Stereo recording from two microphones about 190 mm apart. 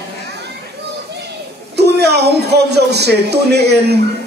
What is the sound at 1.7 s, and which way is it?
Speech, 60° right (ahead or behind).